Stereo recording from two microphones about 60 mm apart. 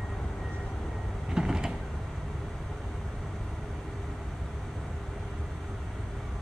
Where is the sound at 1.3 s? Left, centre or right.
Centre.